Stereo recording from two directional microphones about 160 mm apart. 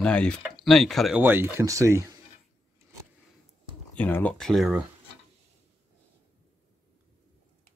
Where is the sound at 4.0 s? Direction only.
10° left (ahead or behind).